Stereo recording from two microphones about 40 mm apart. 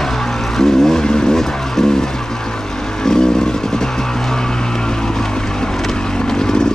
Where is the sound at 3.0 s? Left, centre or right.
Centre.